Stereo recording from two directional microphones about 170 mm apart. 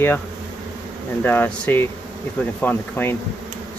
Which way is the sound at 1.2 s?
10° left (ahead or behind).